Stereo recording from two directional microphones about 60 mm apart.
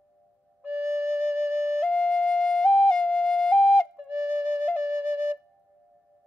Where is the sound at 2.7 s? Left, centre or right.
Left.